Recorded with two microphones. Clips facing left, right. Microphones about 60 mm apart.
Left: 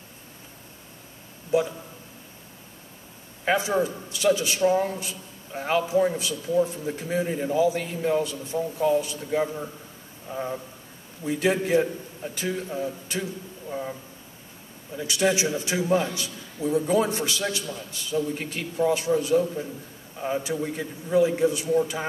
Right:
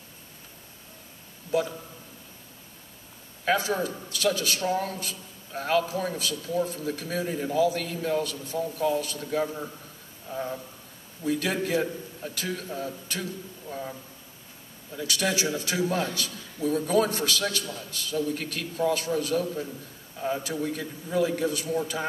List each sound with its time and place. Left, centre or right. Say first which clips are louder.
1.5 s a man's voice: left 3 dB; centre
3.4 s a man's voice: left 2 dB; centre
15.0 s a man's voice: left 4 dB; left